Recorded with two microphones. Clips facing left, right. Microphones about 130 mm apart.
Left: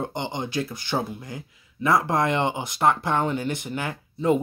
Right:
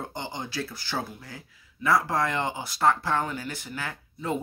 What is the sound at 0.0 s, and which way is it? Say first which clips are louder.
Speech: left 6 dB; 20° left (ahead or behind).